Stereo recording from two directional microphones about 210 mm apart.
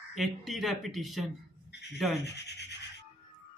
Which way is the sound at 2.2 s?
55° left (ahead or behind).